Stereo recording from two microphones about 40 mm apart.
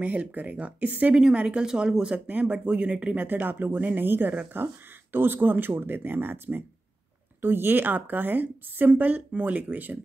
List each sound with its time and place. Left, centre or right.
0.1 s speech: right
1.1 s speech: centre
2.6 s speech: right
3.2 s a woman's voice: right